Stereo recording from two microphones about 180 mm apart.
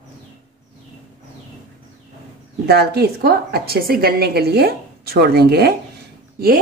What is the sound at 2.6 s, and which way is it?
Speech, 65° right (ahead or behind).